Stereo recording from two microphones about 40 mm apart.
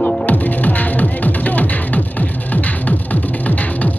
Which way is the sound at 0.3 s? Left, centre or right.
Left.